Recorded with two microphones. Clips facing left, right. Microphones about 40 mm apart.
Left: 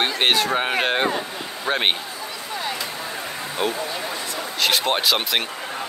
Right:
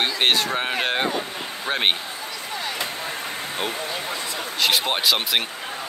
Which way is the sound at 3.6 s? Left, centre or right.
Centre.